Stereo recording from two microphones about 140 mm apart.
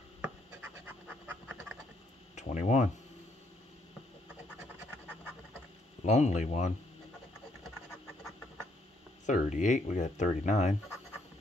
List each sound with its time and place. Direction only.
0.2 s scratch: 10° right (ahead or behind)
2.3 s speech: 55° left (ahead or behind)
6.0 s speech: 55° left (ahead or behind)
9.2 s speech: 60° left (ahead or behind)